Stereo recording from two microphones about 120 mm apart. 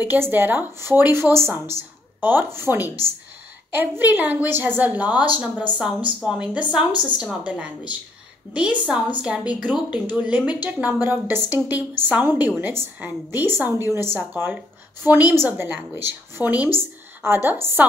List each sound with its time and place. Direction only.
0.1 s a woman's voice: 15° right (ahead or behind)